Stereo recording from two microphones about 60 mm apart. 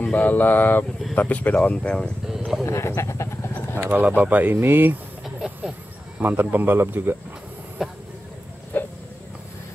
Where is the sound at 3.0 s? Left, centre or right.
Left.